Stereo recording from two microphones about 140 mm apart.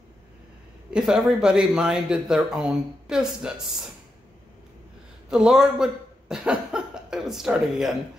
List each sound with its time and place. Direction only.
0.9 s speech: centre (ahead or behind)
5.3 s speech: 5° right (ahead or behind)